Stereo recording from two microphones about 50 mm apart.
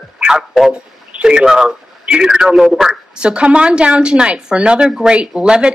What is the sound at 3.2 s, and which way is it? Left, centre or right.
Speech, right.